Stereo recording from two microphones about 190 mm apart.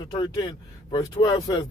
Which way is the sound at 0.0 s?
25° left (ahead or behind).